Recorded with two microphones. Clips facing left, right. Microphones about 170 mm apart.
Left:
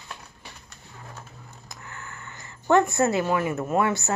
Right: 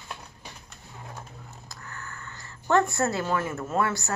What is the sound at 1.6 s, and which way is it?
A child's voice, 15° left (ahead or behind).